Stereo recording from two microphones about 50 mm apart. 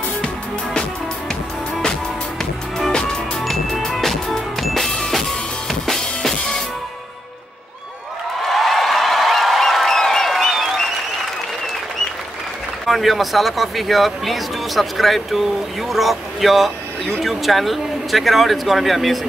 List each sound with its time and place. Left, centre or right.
2.9 s music: centre
3.3 s music: centre
8.5 s a sound: centre
12.8 s speech: centre